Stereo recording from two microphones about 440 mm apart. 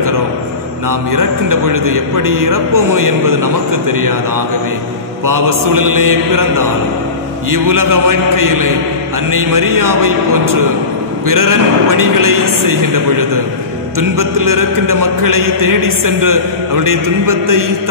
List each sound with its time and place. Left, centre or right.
0.8 s a man's voice: right
5.2 s a man's voice: right
7.4 s a man's voice: right